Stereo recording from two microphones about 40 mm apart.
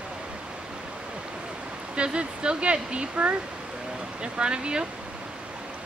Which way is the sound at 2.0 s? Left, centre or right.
Right.